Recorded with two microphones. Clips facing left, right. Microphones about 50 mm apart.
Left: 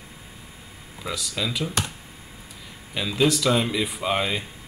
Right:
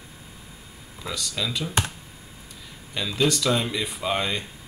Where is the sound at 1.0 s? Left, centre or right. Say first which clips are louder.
Left 1 dB; centre.